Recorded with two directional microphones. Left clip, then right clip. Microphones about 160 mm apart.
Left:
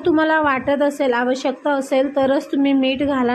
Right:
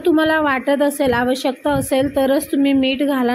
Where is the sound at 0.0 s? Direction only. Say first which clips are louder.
Right 1 dB; 20° right (ahead or behind).